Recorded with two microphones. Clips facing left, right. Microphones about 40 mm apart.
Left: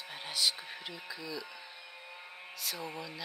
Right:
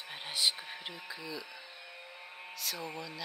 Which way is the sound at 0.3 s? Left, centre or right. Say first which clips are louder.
Even; right.